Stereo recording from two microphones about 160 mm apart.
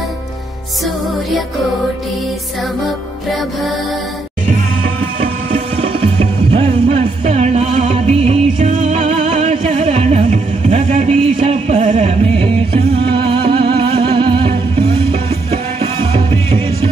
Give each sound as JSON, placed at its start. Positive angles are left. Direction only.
{"t": 6.1, "sound": "music", "side_deg": -40}